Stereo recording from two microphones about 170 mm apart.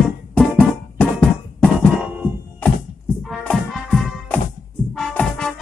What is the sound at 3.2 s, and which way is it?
Music, 5° left (ahead or behind).